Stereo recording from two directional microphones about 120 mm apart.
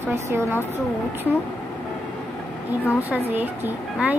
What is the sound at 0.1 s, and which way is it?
Speech, 20° right (ahead or behind).